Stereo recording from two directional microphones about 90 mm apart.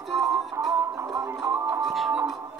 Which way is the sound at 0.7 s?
40° right (ahead or behind).